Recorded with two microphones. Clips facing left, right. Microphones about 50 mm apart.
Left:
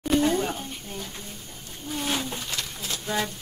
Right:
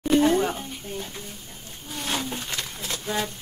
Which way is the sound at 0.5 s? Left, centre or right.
Centre.